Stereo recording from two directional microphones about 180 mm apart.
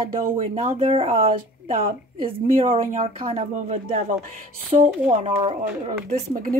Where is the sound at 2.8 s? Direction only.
45° right (ahead or behind).